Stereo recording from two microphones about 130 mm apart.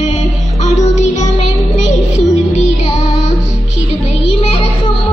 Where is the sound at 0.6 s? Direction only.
65° left (ahead or behind).